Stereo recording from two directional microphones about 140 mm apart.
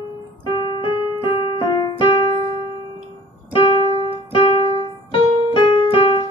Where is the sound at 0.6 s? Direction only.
35° left (ahead or behind).